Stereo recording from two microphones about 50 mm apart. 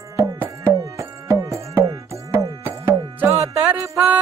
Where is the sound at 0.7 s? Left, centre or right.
Right.